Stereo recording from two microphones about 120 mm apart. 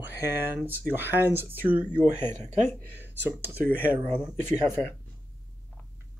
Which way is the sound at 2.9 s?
15° right (ahead or behind).